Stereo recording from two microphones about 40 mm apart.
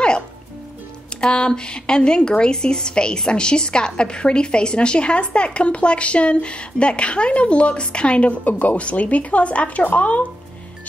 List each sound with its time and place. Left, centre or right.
1.2 s a woman's voice: left